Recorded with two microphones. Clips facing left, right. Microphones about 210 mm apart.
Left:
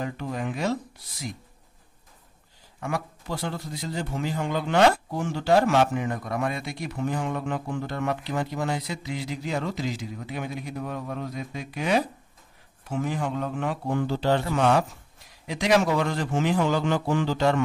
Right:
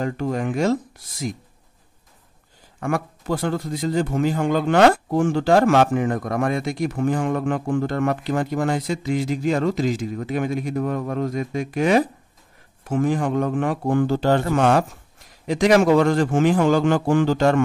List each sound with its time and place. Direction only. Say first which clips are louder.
0.0 s a man's voice: right 7 dB; 50° right (ahead or behind)
2.8 s a man's voice: right 6 dB; 50° right (ahead or behind)